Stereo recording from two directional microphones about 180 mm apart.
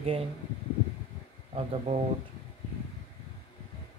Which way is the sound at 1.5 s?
35° right (ahead or behind).